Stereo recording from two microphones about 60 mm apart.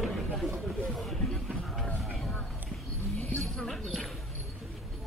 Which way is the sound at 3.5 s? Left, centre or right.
Centre.